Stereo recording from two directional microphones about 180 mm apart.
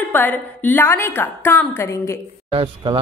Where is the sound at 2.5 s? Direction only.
30° right (ahead or behind).